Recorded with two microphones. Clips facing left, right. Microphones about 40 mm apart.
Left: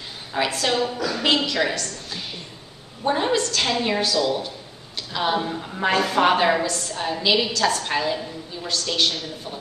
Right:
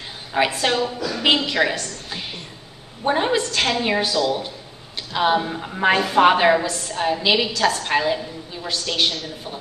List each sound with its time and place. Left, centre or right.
0.3 s a woman's voice: right